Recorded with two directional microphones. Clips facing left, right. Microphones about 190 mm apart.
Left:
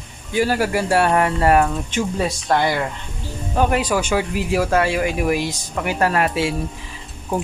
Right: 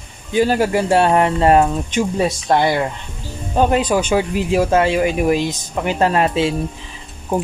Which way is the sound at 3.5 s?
20° right (ahead or behind).